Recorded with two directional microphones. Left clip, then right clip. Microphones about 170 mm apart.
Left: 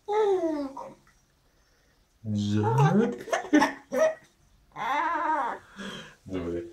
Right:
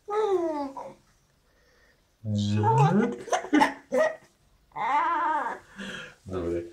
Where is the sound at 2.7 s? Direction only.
25° right (ahead or behind).